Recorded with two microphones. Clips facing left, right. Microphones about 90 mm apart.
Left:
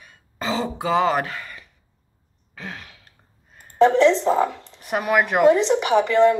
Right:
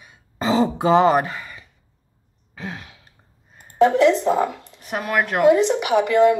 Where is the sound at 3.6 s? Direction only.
5° right (ahead or behind).